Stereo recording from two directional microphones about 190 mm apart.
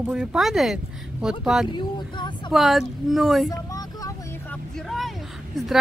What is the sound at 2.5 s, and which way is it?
Speech, centre (ahead or behind).